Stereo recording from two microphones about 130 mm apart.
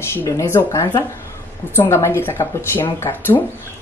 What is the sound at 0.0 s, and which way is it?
Speech, 20° left (ahead or behind).